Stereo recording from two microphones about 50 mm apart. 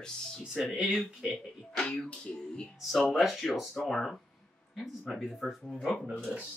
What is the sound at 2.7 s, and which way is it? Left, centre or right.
Speech, centre.